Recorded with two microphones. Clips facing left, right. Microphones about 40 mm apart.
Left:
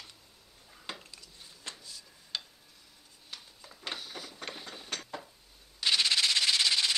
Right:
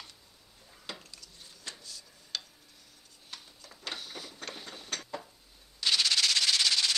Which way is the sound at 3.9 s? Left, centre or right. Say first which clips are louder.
Even; centre.